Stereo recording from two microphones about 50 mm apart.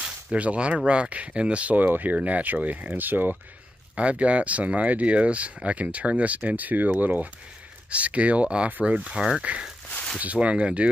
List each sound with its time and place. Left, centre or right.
0.0 s a sound: right
0.8 s speech: right
3.9 s speech: right